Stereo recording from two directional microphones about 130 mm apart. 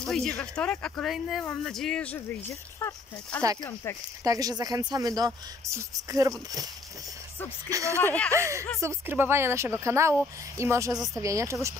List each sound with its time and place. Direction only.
0.0 s speech: 5° left (ahead or behind)
2.1 s speech: 15° left (ahead or behind)
4.2 s speech: 30° right (ahead or behind)
7.7 s speech: 25° right (ahead or behind)
8.0 s speech: 10° left (ahead or behind)
8.3 s speech: 25° right (ahead or behind)